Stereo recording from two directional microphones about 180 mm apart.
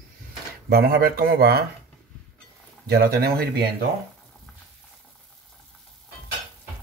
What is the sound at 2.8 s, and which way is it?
Speech, 60° right (ahead or behind).